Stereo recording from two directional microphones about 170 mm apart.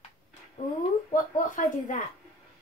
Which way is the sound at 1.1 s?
50° left (ahead or behind).